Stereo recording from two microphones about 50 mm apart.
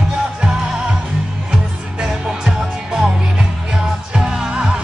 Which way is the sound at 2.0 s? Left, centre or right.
Centre.